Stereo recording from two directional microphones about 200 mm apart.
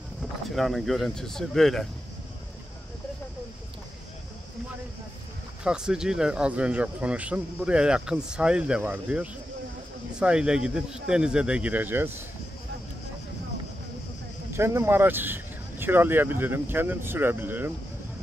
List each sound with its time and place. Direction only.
0.6 s speech: centre (ahead or behind)
5.6 s speech: 5° right (ahead or behind)
14.5 s speech: 15° right (ahead or behind)